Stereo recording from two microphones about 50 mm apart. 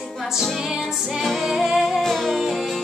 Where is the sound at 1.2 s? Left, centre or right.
Centre.